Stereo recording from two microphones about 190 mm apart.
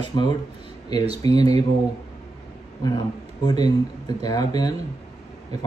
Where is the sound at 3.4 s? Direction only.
20° left (ahead or behind).